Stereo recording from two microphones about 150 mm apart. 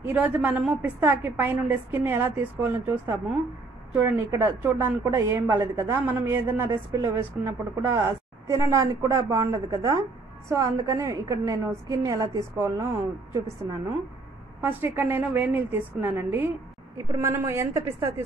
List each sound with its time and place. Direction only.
0.0 s a woman's voice: 10° right (ahead or behind)
14.6 s a woman's voice: 15° right (ahead or behind)